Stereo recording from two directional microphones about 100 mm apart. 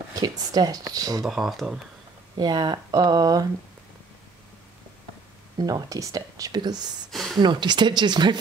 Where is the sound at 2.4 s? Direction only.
45° right (ahead or behind).